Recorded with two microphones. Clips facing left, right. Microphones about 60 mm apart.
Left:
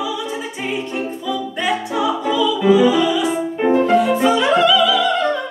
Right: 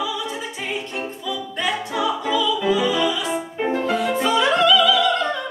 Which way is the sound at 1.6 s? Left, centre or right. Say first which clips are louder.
Left 2 dB; centre.